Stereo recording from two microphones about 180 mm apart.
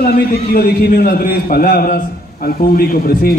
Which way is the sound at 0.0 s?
55° left (ahead or behind).